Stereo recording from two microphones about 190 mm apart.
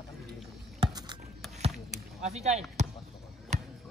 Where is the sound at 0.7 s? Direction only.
25° right (ahead or behind).